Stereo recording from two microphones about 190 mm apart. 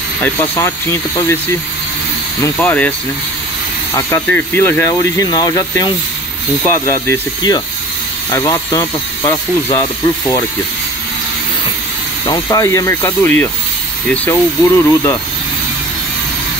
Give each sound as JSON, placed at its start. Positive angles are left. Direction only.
{"t": 0.2, "sound": "speech", "side_deg": 15}
{"t": 2.4, "sound": "speech", "side_deg": 10}
{"t": 3.9, "sound": "speech", "side_deg": 15}
{"t": 12.3, "sound": "speech", "side_deg": 20}